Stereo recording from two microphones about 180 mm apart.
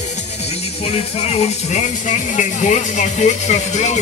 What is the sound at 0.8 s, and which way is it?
Speech, 35° left (ahead or behind).